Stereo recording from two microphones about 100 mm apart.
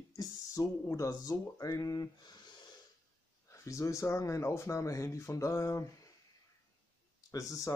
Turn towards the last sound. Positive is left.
turn(degrees=35)  # may be behind; listen again after turning